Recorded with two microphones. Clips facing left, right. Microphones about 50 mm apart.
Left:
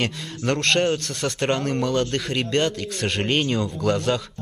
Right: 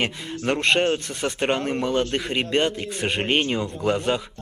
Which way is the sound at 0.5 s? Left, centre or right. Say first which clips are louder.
Even; centre.